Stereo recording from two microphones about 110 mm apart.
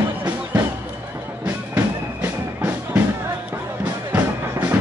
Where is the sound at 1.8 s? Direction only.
20° right (ahead or behind).